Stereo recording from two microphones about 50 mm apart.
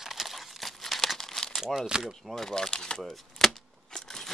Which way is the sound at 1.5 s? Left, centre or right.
Centre.